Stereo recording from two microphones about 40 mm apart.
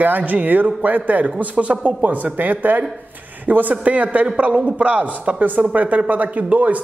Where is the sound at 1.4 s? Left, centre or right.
Right.